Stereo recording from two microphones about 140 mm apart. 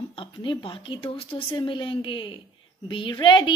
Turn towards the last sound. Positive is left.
turn(degrees=35)  # may be behind; listen again after turning